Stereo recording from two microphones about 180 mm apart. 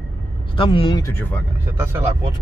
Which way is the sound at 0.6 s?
30° left (ahead or behind).